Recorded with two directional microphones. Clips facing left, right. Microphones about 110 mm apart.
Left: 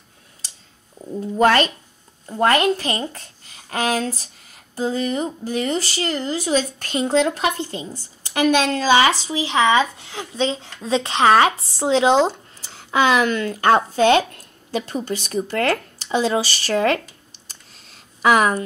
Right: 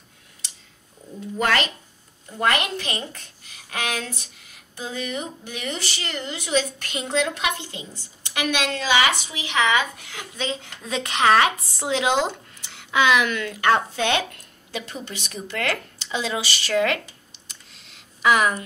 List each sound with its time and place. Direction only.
1.4 s speech: 40° left (ahead or behind)